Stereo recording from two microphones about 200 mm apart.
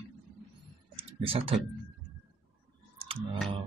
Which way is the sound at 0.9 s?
25° right (ahead or behind).